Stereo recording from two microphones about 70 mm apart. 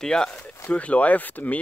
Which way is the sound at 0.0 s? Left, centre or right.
Centre.